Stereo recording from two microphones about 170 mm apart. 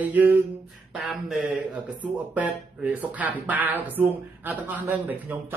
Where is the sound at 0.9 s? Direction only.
5° right (ahead or behind).